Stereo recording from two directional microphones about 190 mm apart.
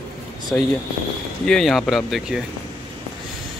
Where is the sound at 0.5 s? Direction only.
10° left (ahead or behind).